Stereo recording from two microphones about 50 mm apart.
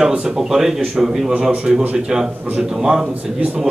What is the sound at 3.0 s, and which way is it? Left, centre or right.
Speech, right.